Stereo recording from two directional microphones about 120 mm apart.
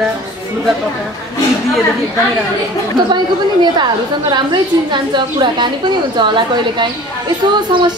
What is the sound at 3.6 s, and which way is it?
A woman's voice, 35° right (ahead or behind).